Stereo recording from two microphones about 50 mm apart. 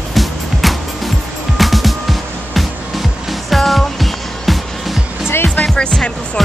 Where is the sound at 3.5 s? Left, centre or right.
Centre.